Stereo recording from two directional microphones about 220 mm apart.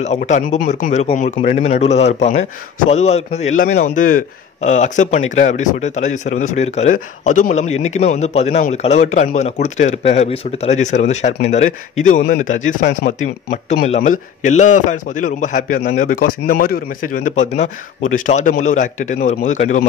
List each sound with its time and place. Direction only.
0.0 s a man's voice: 30° left (ahead or behind)